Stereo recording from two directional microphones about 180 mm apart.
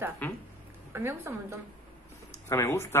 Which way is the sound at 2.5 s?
15° left (ahead or behind).